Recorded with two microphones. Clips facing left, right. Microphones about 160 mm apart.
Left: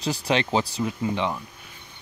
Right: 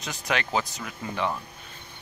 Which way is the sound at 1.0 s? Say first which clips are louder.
Left 2 dB; 20° left (ahead or behind).